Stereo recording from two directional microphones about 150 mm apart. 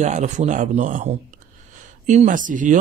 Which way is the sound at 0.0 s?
50° right (ahead or behind).